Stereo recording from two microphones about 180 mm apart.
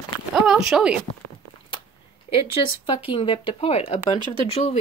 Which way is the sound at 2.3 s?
30° left (ahead or behind).